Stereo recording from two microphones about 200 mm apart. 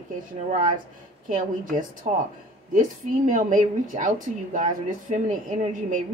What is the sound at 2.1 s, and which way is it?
Speech, 40° right (ahead or behind).